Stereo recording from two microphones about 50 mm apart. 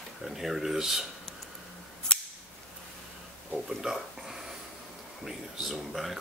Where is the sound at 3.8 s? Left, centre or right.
Centre.